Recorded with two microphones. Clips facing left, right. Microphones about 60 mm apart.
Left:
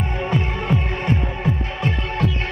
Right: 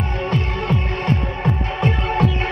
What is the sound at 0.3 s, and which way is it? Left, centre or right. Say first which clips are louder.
Music: even; centre.